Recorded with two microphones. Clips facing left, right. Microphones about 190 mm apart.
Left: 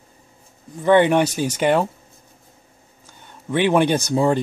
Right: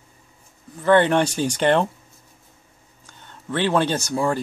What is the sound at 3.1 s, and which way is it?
Speech, 15° left (ahead or behind).